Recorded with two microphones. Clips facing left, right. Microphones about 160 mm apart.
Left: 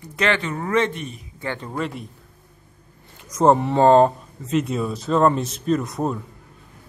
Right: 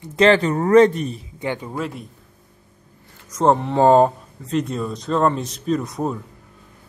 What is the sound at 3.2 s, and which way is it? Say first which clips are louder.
Speech: left 1 dB; 5° left (ahead or behind).